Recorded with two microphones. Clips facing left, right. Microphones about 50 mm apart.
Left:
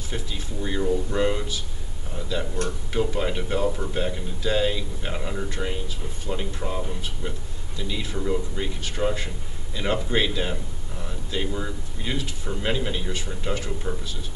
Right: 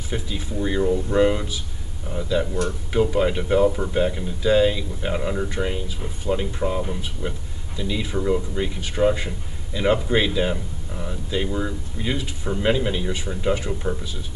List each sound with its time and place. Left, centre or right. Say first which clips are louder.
0.1 s speech: right 5 dB; centre